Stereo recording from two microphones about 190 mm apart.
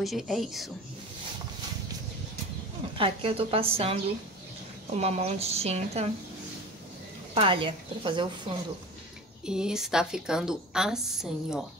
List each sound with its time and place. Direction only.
0.0 s a woman's voice: centre (ahead or behind)
3.0 s speech: 30° right (ahead or behind)
7.3 s speech: 25° right (ahead or behind)
9.5 s a woman's voice: 5° right (ahead or behind)